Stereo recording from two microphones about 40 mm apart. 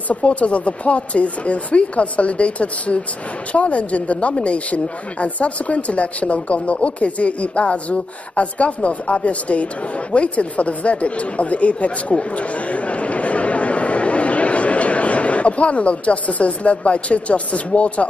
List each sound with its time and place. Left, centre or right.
0.1 s speech: left